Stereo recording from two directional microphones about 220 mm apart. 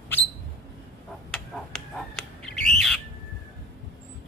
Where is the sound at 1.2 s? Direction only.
5° left (ahead or behind).